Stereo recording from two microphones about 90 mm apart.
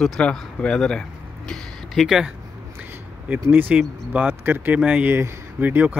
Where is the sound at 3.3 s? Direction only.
20° right (ahead or behind).